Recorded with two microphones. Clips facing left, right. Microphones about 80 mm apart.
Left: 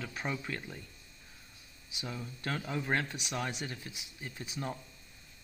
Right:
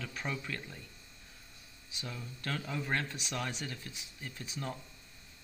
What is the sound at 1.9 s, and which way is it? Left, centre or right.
Speech, centre.